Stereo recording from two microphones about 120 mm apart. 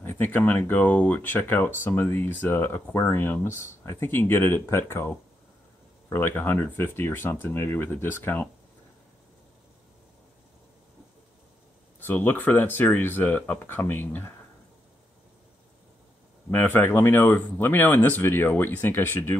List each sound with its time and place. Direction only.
0.0 s speech: 15° left (ahead or behind)
12.0 s speech: 15° left (ahead or behind)
16.4 s speech: 15° left (ahead or behind)